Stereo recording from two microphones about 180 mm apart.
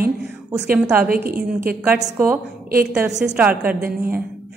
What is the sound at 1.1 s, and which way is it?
Speech, 55° right (ahead or behind).